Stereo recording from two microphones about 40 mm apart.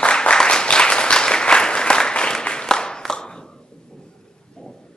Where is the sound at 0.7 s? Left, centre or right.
Left.